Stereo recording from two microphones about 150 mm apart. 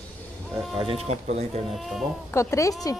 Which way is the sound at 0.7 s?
40° right (ahead or behind).